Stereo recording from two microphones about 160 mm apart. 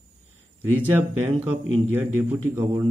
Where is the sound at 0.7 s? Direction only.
10° right (ahead or behind).